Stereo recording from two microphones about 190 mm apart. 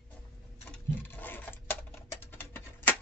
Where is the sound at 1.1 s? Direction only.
10° left (ahead or behind).